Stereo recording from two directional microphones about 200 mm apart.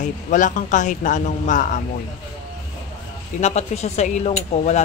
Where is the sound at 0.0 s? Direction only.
40° left (ahead or behind).